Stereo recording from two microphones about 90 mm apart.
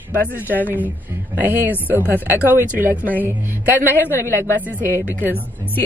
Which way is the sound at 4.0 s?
25° left (ahead or behind).